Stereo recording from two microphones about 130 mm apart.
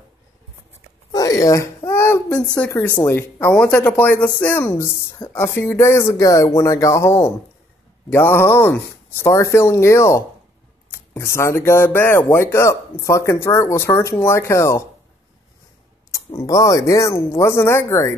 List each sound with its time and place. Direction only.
1.1 s babbling: 25° left (ahead or behind)
2.7 s speech: 20° left (ahead or behind)
16.3 s speech: 25° left (ahead or behind)